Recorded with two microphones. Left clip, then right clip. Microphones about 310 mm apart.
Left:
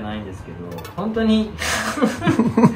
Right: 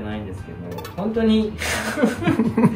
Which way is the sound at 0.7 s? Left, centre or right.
Centre.